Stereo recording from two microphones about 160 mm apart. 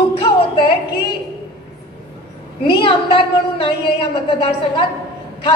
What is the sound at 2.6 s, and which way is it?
A woman's voice, 30° left (ahead or behind).